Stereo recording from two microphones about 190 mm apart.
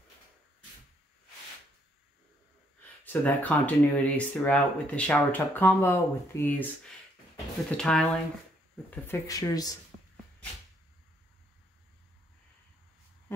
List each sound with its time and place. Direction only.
2.8 s speech: 10° left (ahead or behind)
7.7 s speech: 5° left (ahead or behind); by 9.8 s 20° left (ahead or behind)